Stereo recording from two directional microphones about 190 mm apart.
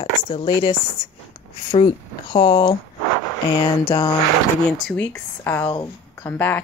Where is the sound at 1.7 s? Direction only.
25° left (ahead or behind).